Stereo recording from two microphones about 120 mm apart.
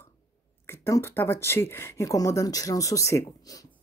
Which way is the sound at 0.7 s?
25° left (ahead or behind).